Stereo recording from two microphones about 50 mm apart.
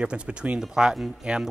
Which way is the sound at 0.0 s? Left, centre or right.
Right.